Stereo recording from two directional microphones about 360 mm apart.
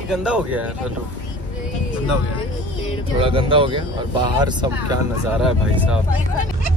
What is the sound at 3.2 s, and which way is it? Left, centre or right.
Speech, centre.